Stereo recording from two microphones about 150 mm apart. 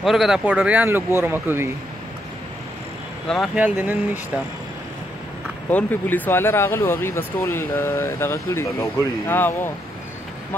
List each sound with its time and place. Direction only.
0.0 s speech: centre (ahead or behind)
3.5 s speech: 10° right (ahead or behind)
5.7 s speech: 10° left (ahead or behind)